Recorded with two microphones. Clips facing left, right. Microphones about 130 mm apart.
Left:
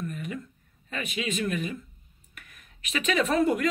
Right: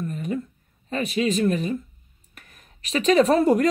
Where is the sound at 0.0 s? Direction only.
35° right (ahead or behind).